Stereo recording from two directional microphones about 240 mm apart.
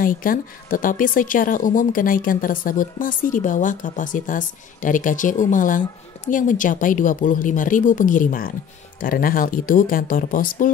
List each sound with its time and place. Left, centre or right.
0.0 s speech: left